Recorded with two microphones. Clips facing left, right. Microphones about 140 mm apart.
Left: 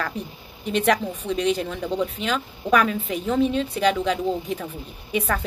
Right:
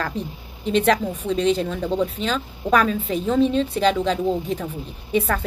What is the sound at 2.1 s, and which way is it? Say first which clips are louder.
A woman's voice: right 1 dB; 10° left (ahead or behind).